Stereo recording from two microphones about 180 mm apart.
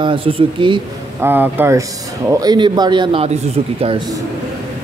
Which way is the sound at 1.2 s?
10° right (ahead or behind).